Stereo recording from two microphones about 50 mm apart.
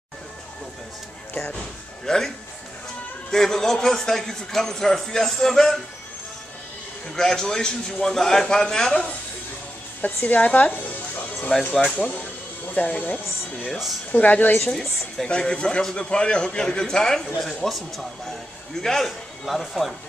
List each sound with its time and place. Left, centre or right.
1.5 s a man's voice: centre
7.2 s a man's voice: centre
10.0 s a woman's voice: left
11.5 s a man's voice: centre
11.9 s a woman's voice: left
14.7 s a woman's voice: centre
15.2 s a man's voice: centre
19.0 s speech: centre